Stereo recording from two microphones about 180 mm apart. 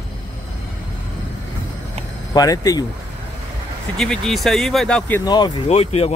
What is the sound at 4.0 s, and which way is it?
Speech, 5° left (ahead or behind).